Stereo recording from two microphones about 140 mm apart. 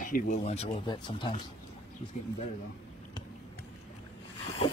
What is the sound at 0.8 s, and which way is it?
Speech, 35° left (ahead or behind).